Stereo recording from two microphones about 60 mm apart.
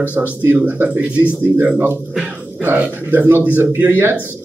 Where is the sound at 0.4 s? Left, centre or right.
Right.